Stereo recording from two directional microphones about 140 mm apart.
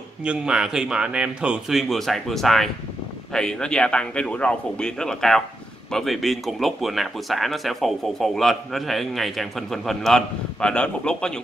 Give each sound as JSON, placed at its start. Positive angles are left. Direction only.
{"t": 0.2, "sound": "speech", "side_deg": -5}